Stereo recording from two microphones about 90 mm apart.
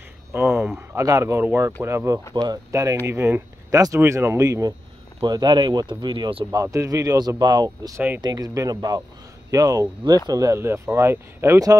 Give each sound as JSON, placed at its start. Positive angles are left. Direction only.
{"t": 0.3, "sound": "speech", "side_deg": -20}
{"t": 1.0, "sound": "speech", "side_deg": -35}
{"t": 2.3, "sound": "speech", "side_deg": -45}
{"t": 3.1, "sound": "speech", "side_deg": -25}
{"t": 3.7, "sound": "speech", "side_deg": -35}
{"t": 5.2, "sound": "speech", "side_deg": -55}
{"t": 6.5, "sound": "speech", "side_deg": -35}